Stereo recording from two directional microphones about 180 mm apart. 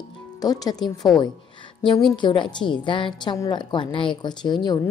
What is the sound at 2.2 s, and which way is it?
A woman's voice, 25° left (ahead or behind).